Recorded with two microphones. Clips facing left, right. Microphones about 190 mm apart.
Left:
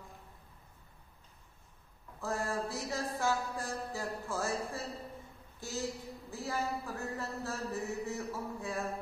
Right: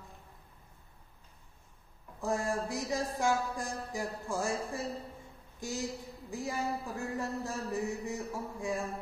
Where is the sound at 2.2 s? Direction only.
15° right (ahead or behind).